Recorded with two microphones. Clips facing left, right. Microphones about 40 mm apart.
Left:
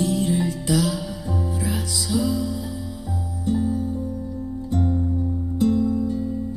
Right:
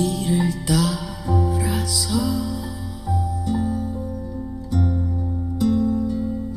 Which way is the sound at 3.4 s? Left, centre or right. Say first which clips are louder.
Left 4 dB; right.